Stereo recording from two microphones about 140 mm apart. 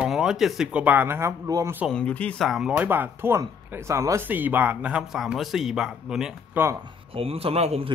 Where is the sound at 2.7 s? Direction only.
15° right (ahead or behind).